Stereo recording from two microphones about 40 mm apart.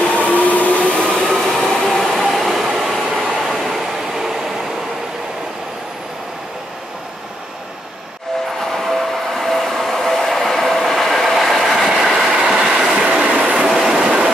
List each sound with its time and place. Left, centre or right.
0.1 s train: left
1.0 s train: centre
8.7 s train: centre; by 13.7 s right
13.7 s train: centre